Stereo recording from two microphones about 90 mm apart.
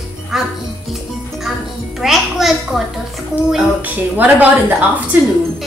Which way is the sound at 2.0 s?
5° right (ahead or behind).